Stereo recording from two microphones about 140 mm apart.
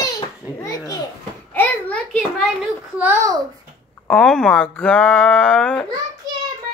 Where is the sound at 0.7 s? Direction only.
25° left (ahead or behind).